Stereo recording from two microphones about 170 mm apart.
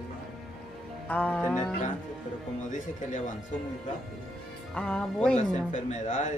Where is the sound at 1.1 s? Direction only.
10° left (ahead or behind).